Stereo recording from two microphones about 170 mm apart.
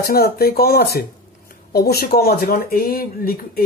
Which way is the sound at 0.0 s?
65° left (ahead or behind).